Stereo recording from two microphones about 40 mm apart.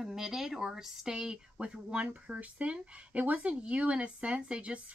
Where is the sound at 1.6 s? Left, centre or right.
Right.